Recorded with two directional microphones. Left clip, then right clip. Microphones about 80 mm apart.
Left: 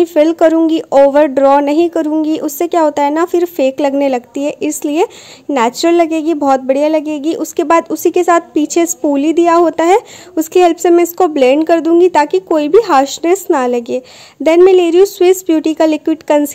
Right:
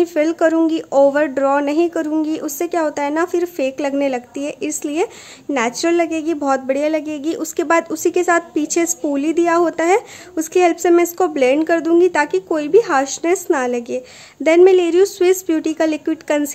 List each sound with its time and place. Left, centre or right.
0.0 s a woman's voice: left